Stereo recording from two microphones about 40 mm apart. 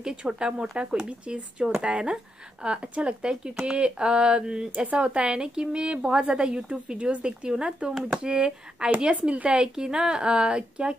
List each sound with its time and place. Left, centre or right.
0.0 s speech: right